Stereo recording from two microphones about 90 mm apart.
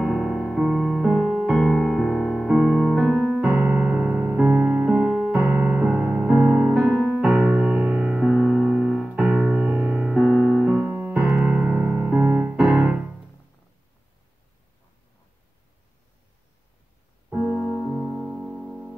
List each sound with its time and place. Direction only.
0.0 s music: 5° right (ahead or behind)
11.2 s piano: 10° right (ahead or behind)
17.3 s music: 15° right (ahead or behind)